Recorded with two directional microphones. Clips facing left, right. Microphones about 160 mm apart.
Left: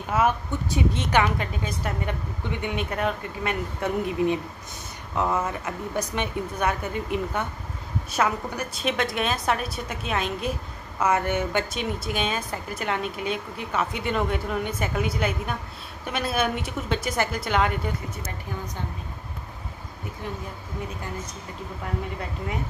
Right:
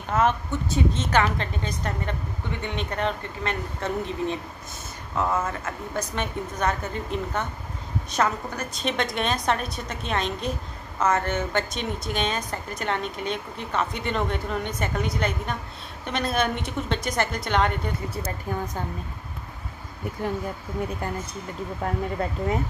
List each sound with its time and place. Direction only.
0.1 s a woman's voice: 10° left (ahead or behind)
18.5 s a woman's voice: 50° right (ahead or behind)